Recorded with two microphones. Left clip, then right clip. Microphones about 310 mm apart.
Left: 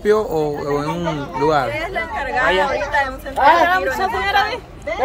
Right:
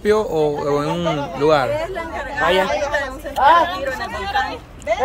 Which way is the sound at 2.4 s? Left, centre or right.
Right.